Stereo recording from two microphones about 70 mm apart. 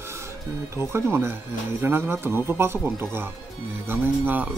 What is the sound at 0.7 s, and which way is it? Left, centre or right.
Speech, right.